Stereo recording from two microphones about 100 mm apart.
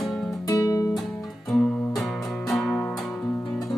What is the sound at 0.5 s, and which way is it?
Music, 35° left (ahead or behind).